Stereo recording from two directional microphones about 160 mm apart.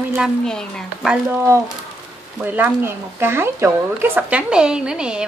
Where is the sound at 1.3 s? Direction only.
15° right (ahead or behind).